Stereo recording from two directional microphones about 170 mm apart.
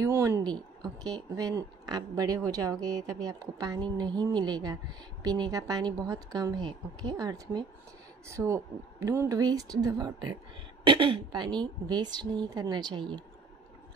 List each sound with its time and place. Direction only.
0.0 s a woman's voice: 15° right (ahead or behind)
0.5 s a woman's voice: 25° right (ahead or behind)